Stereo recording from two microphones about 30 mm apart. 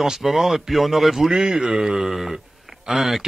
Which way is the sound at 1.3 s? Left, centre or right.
Right.